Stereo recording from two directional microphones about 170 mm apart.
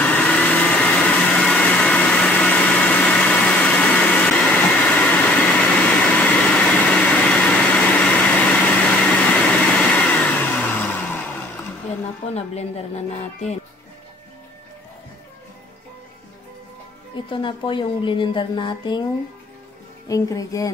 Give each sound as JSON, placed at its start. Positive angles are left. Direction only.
{"t": 0.0, "sound": "vehicle", "side_deg": 10}
{"t": 12.4, "sound": "a sound", "side_deg": 40}
{"t": 17.3, "sound": "speech", "side_deg": 30}
{"t": 20.1, "sound": "speech", "side_deg": 20}